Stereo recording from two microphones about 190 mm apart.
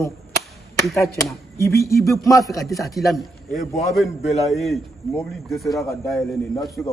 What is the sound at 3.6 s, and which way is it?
Speech, 35° left (ahead or behind).